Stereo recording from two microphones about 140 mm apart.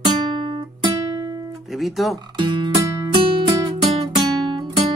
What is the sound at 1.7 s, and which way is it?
Music, centre (ahead or behind).